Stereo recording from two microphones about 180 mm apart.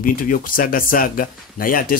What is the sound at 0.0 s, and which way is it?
Speech, 50° left (ahead or behind).